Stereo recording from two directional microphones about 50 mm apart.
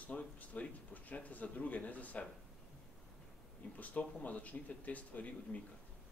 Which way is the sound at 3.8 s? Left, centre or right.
Left.